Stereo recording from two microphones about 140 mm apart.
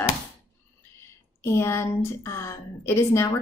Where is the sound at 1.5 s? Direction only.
20° left (ahead or behind).